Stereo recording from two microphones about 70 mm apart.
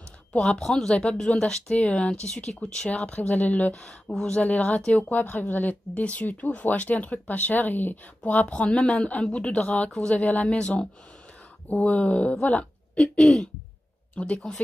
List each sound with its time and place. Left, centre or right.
0.3 s speech: centre